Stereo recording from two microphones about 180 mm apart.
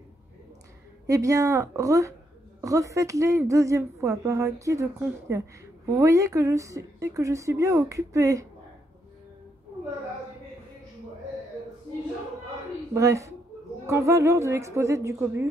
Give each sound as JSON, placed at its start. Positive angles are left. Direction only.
{"t": 1.0, "sound": "a woman's voice", "side_deg": -20}
{"t": 12.9, "sound": "a woman's voice", "side_deg": -15}